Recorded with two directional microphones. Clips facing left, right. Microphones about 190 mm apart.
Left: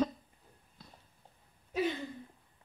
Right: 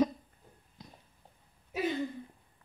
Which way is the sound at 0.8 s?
15° right (ahead or behind).